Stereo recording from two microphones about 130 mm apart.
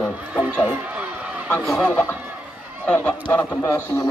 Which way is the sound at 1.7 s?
5° left (ahead or behind).